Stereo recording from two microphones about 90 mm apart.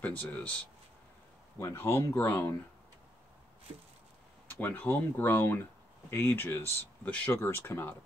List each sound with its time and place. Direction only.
0.0 s speech: 20° left (ahead or behind)
1.6 s speech: 30° left (ahead or behind)
4.5 s speech: 20° left (ahead or behind)
7.1 s speech: 15° left (ahead or behind)
7.3 s speech: 25° left (ahead or behind)